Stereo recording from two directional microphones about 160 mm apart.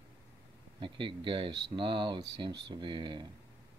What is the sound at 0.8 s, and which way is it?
Speech, 30° right (ahead or behind).